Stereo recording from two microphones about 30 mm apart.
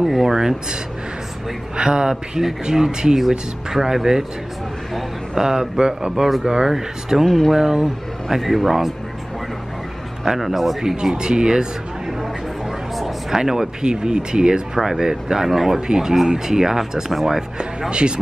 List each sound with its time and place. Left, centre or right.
0.0 s speech: centre
1.8 s speech: right
3.2 s speech: centre
5.3 s speech: right
6.7 s speech: centre
7.2 s speech: centre
7.5 s speech: centre
10.2 s speech: centre
11.1 s speech: right
12.9 s a sound: centre
13.4 s speech: centre
13.8 s speech: right
14.8 s speech: centre
17.6 s speech: right